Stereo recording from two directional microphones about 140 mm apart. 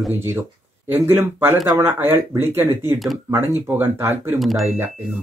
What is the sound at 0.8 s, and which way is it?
Speech, 15° right (ahead or behind).